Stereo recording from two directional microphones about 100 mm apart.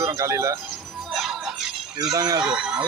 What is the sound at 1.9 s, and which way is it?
Speech, 40° right (ahead or behind).